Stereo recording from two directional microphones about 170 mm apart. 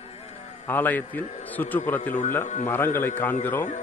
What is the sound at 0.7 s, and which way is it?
A man's voice, 10° left (ahead or behind).